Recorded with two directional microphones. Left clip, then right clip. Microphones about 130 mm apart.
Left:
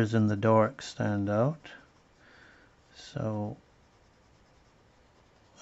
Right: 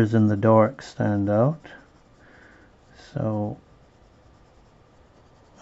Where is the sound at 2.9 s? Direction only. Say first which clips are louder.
Right 6 dB; 30° left (ahead or behind).